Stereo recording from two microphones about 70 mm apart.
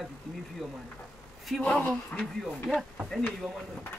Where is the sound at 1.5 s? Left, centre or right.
Centre.